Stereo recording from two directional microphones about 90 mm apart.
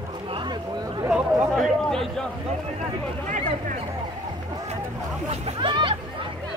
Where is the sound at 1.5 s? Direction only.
Centre (ahead or behind).